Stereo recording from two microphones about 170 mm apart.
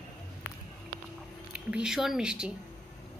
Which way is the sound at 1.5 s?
5° right (ahead or behind).